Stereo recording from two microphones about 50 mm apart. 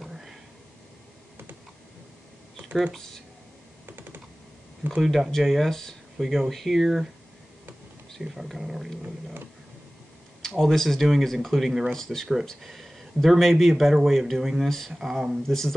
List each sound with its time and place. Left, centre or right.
0.0 s a sound: centre
2.9 s speech: centre
3.8 s computer keyboard: right
5.0 s speech: centre
8.2 s speech: centre
9.0 s dog: right
10.4 s speech: centre